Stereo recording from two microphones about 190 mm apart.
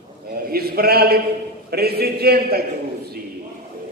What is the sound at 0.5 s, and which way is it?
A man's voice, 55° right (ahead or behind).